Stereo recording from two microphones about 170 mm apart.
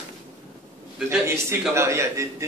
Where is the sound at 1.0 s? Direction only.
15° right (ahead or behind).